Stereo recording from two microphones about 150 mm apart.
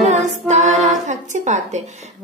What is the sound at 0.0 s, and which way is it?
Music, 50° right (ahead or behind).